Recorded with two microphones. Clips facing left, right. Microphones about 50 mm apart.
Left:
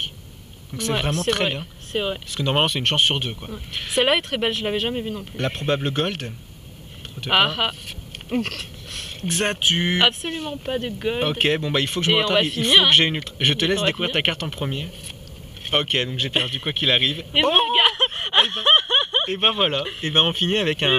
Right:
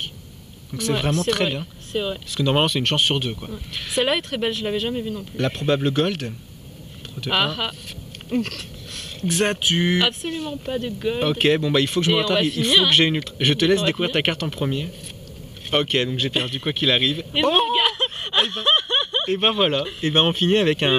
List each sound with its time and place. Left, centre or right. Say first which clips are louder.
0.7 s speech: right 2 dB; left
1.9 s speech: left 1 dB; left
2.3 s speech: right 2 dB; centre
4.0 s speech: left 2 dB; left
5.4 s speech: right 2 dB; centre
7.2 s speech: left 3 dB; left
9.3 s speech: right 1 dB; centre
9.9 s speech: left 1 dB; left; by 12.1 s centre
12.1 s speech: even; left
17.7 s snicker: left 2 dB; left
19.3 s speech: right 3 dB; centre
19.8 s speech: right 2 dB; left
20.1 s speech: right 2 dB; centre